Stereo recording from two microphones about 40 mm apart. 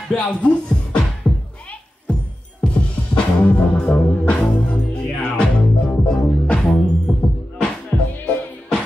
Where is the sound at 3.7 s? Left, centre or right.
Left.